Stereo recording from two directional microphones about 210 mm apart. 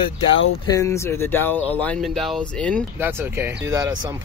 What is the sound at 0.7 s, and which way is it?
Speech, 15° left (ahead or behind).